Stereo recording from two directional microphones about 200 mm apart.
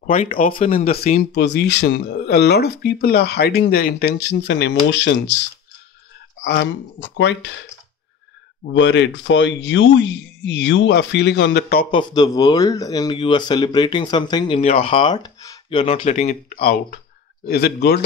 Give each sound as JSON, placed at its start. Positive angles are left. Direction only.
{"t": 0.0, "sound": "speech", "side_deg": 40}
{"t": 0.5, "sound": "speech", "side_deg": 30}
{"t": 1.3, "sound": "speech", "side_deg": 60}
{"t": 6.4, "sound": "speech", "side_deg": 55}
{"t": 8.7, "sound": "speech", "side_deg": 65}
{"t": 11.9, "sound": "speech", "side_deg": 20}
{"t": 16.5, "sound": "a man's voice", "side_deg": 50}